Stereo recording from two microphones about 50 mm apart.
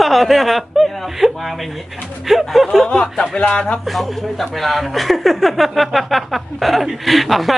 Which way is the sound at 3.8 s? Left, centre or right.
Centre.